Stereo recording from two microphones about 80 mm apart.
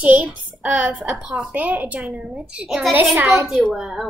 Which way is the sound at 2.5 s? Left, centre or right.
Centre.